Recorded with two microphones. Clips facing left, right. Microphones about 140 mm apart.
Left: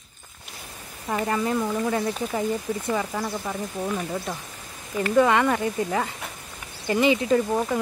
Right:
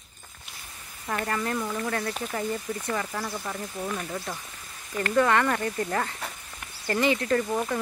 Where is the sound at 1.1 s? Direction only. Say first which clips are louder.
Left 4 dB; 15° left (ahead or behind).